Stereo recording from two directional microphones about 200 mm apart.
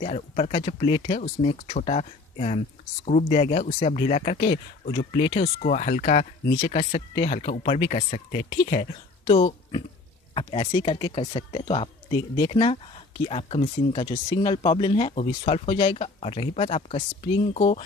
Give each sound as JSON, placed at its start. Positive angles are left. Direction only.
{"t": 0.0, "sound": "speech", "side_deg": 30}